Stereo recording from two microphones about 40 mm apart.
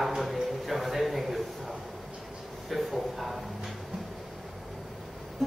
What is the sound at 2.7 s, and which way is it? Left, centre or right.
Speech, centre.